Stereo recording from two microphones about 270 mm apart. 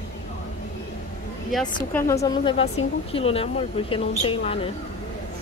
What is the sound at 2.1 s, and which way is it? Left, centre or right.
Speech, centre.